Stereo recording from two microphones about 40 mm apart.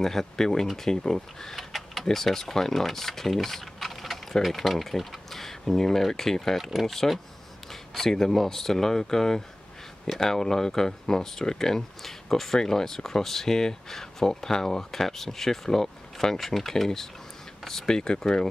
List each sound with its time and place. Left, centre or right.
0.0 s speech: centre
6.6 s speech: centre
7.9 s speech: centre
17.9 s speech: centre